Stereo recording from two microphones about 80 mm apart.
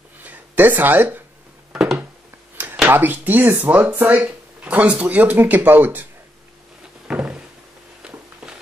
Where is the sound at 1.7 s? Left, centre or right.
Centre.